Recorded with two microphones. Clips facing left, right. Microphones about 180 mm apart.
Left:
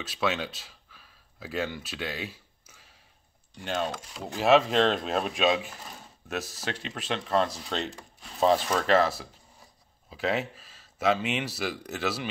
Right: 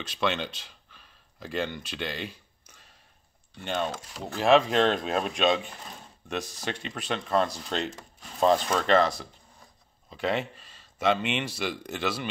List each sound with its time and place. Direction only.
0.0 s speech: 5° left (ahead or behind)